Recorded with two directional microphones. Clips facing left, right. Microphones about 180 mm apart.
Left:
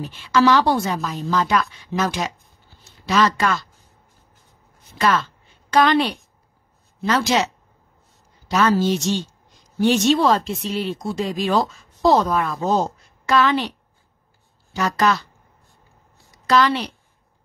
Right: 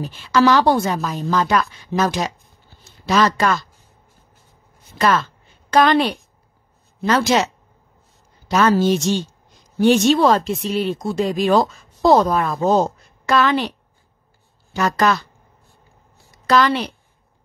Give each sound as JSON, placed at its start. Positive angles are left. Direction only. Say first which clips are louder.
{"t": 0.3, "sound": "a woman's voice", "louder": "right 2 dB", "side_deg": -40}
{"t": 5.7, "sound": "speech", "louder": "right 2 dB", "side_deg": -45}
{"t": 8.5, "sound": "speech", "louder": "right 2 dB", "side_deg": -50}
{"t": 14.7, "sound": "speech", "louder": "right 2 dB", "side_deg": -50}
{"t": 16.4, "sound": "speech", "louder": "right 1 dB", "side_deg": -50}